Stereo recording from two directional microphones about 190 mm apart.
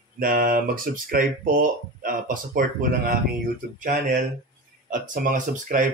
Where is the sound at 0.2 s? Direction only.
50° right (ahead or behind).